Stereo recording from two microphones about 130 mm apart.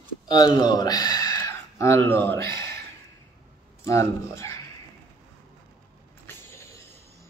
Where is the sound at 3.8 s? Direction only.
20° left (ahead or behind).